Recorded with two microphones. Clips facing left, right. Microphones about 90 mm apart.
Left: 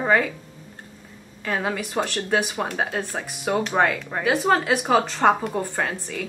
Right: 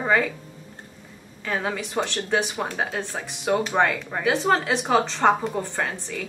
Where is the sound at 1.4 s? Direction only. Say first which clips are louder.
Left 1 dB; centre (ahead or behind).